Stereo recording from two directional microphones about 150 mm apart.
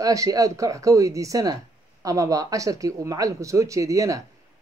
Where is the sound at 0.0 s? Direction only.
25° right (ahead or behind).